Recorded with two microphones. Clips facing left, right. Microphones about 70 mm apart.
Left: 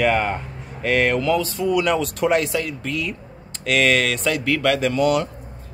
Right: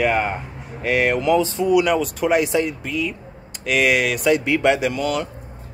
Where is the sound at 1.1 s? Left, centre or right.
Right.